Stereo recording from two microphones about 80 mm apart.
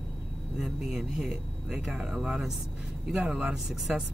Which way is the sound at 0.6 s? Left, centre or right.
Centre.